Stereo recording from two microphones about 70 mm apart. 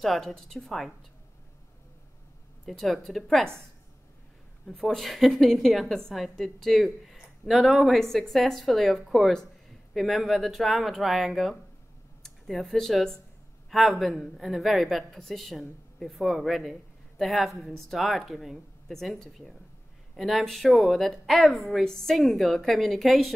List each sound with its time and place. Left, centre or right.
0.0 s a woman's voice: centre
2.6 s a woman's voice: centre
4.6 s a woman's voice: centre